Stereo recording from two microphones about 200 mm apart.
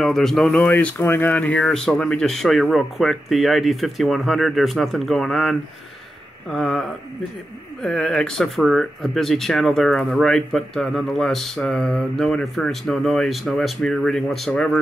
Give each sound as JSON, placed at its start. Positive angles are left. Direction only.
{"t": 0.0, "sound": "speech", "side_deg": 0}